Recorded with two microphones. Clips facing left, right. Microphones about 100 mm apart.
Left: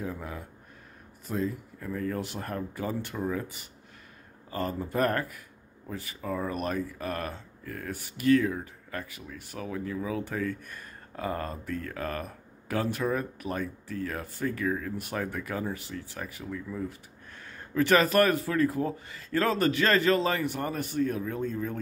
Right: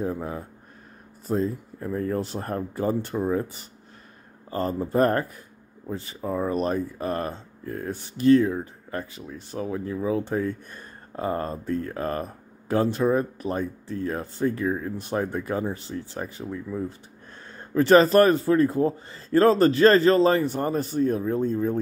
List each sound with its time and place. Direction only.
0.0 s a man's voice: 30° right (ahead or behind)